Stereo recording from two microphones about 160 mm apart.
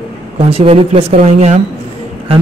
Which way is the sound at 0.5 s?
40° right (ahead or behind).